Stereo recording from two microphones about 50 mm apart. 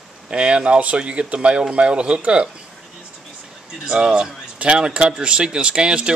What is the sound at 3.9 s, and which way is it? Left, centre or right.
A man's voice, centre.